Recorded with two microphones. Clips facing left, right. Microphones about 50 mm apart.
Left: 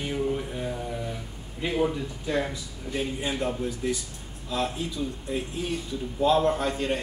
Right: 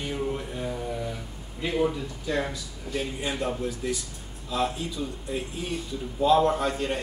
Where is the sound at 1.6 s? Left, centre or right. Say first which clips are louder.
Even; centre.